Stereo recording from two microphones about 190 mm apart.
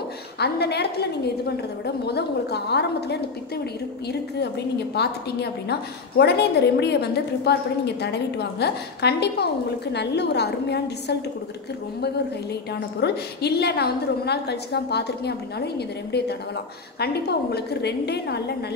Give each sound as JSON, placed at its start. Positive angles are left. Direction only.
{"t": 0.4, "sound": "a woman's voice", "side_deg": 60}
{"t": 13.0, "sound": "a woman's voice", "side_deg": 60}